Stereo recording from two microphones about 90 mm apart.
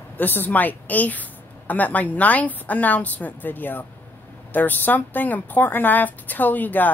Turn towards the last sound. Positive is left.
turn(degrees=20)  # may be behind; listen again after turning